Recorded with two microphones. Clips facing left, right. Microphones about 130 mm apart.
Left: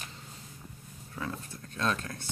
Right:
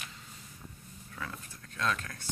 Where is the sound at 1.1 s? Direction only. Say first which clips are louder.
Left 5 dB; 25° left (ahead or behind).